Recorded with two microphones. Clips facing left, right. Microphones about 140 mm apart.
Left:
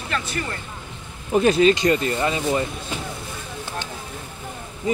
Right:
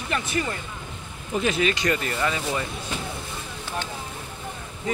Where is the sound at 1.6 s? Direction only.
30° left (ahead or behind).